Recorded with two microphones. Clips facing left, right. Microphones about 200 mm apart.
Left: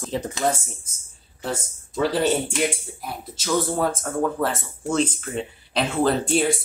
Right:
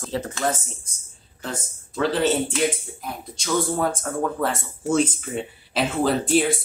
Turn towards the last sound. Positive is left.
turn(degrees=0)  # may be behind; listen again after turning